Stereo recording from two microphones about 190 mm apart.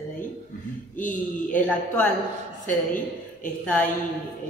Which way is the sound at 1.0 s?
45° left (ahead or behind).